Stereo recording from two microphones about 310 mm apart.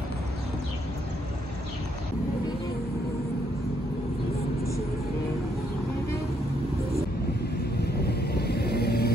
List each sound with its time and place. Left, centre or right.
7.8 s vehicle: left